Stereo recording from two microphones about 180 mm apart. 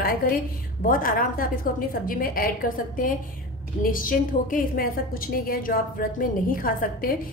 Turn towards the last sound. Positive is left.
turn(degrees=55)  # may be behind; listen again after turning